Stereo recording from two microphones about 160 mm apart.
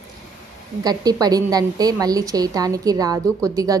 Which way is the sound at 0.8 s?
25° right (ahead or behind).